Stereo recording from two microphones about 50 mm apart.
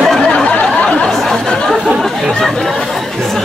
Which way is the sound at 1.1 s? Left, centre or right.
Centre.